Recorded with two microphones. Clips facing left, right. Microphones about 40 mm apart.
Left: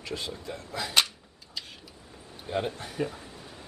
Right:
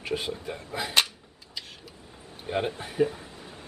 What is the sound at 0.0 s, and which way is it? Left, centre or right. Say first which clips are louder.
Speech: right 5 dB; right.